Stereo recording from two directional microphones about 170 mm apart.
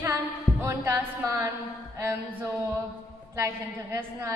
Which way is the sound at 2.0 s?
15° right (ahead or behind).